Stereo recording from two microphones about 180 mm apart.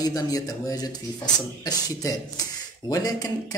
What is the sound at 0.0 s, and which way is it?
Speech, 20° left (ahead or behind).